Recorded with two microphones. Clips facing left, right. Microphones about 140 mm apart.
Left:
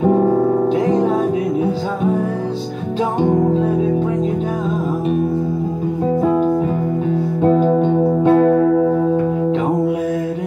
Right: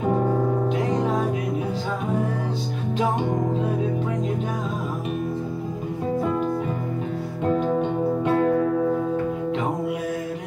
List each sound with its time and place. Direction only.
7.4 s music: 40° left (ahead or behind)
8.5 s music: 55° left (ahead or behind)